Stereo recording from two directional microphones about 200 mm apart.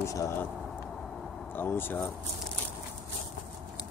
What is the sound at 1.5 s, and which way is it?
Speech, 10° left (ahead or behind).